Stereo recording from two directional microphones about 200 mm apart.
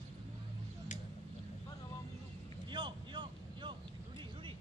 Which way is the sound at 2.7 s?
25° right (ahead or behind).